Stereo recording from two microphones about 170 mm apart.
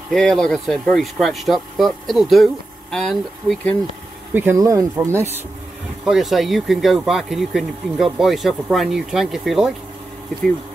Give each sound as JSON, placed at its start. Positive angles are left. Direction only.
{"t": 0.1, "sound": "speech", "side_deg": 5}
{"t": 4.3, "sound": "speech", "side_deg": -10}
{"t": 6.0, "sound": "speech", "side_deg": 0}